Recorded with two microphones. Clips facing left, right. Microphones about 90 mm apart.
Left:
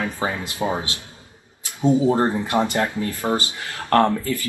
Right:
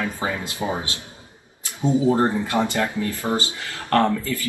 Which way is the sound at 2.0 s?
20° left (ahead or behind).